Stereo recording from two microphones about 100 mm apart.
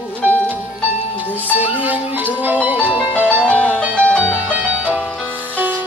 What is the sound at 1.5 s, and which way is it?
Music, 15° right (ahead or behind).